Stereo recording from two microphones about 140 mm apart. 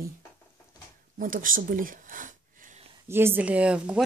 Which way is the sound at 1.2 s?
80° right.